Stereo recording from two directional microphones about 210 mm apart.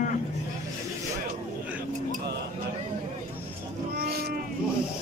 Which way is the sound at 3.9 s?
50° right (ahead or behind).